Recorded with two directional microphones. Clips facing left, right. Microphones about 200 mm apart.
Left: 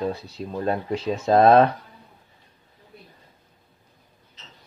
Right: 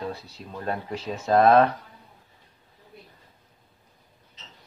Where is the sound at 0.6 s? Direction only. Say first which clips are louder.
Left 5 dB; 20° left (ahead or behind).